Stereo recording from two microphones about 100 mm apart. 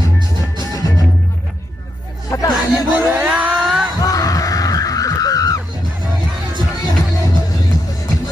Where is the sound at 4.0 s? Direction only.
35° left (ahead or behind).